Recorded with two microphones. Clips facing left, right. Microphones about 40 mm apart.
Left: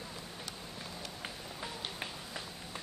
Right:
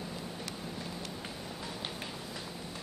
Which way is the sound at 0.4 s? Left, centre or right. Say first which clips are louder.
Right 4 dB; centre.